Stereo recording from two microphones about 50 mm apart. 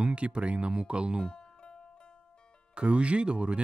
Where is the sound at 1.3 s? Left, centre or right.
Centre.